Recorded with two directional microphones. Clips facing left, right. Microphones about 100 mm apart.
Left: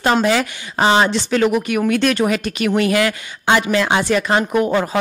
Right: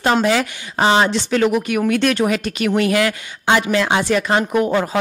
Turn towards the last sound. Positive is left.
turn(degrees=20)  # may be behind; listen again after turning